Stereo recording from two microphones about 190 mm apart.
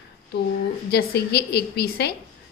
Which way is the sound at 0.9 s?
60° left (ahead or behind).